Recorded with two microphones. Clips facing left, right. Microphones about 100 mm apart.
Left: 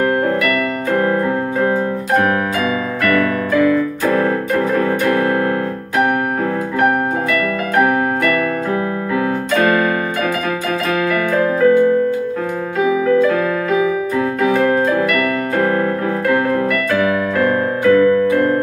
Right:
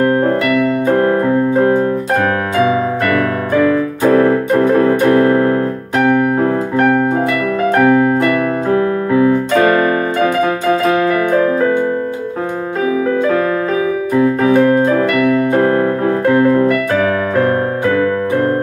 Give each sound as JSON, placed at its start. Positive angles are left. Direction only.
{"t": 4.0, "sound": "keyboard", "side_deg": -35}
{"t": 8.6, "sound": "keyboard", "side_deg": -35}
{"t": 10.7, "sound": "music", "side_deg": -30}
{"t": 14.5, "sound": "music", "side_deg": -30}
{"t": 16.3, "sound": "piano", "side_deg": -30}